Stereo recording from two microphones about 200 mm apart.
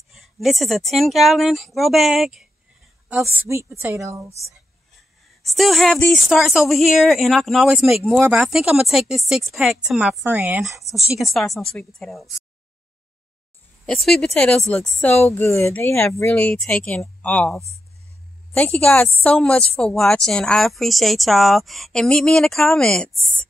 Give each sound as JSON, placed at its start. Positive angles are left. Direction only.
{"t": 0.1, "sound": "a woman's voice", "side_deg": 0}
{"t": 5.4, "sound": "speech", "side_deg": 0}
{"t": 13.8, "sound": "speech", "side_deg": 0}